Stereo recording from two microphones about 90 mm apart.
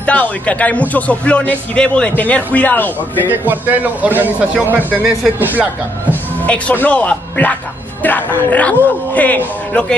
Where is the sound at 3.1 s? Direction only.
20° right (ahead or behind).